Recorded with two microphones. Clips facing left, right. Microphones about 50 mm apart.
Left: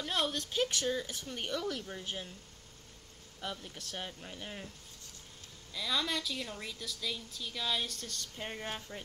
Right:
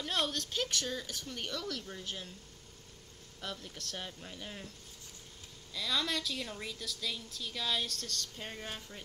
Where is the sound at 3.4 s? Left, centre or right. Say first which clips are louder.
Left 1 dB; centre.